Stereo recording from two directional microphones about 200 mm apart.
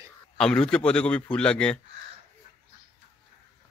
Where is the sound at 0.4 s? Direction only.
5° left (ahead or behind).